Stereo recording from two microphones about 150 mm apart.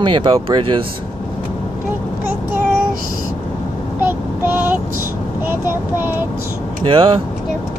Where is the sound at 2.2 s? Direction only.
15° right (ahead or behind).